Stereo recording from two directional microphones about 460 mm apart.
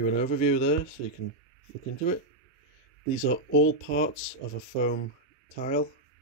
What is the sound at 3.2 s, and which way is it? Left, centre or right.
Speech, left.